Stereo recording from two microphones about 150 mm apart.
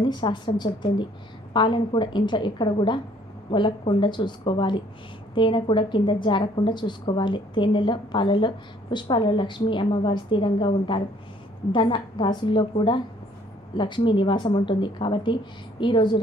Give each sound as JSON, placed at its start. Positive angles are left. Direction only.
{"t": 0.0, "sound": "a woman's voice", "side_deg": 30}
{"t": 1.5, "sound": "a woman's voice", "side_deg": 30}